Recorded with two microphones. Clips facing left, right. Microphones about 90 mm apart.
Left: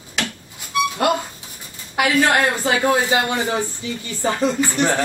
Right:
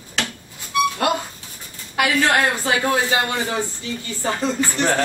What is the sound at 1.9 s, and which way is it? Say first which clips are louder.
Speech: left 1 dB; 15° left (ahead or behind).